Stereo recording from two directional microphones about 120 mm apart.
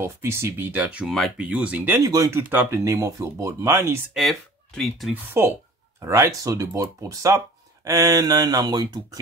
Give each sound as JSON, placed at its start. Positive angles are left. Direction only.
{"t": 0.0, "sound": "speech", "side_deg": -20}
{"t": 2.0, "sound": "speech", "side_deg": -30}
{"t": 4.1, "sound": "speech", "side_deg": 0}
{"t": 5.1, "sound": "speech", "side_deg": -20}